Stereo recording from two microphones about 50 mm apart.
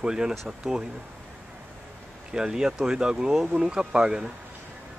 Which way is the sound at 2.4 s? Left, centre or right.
Centre.